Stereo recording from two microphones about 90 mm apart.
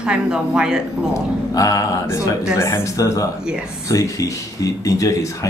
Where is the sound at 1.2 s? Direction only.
35° left (ahead or behind).